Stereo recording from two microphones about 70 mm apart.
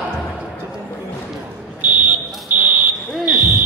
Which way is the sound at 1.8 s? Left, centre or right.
Right.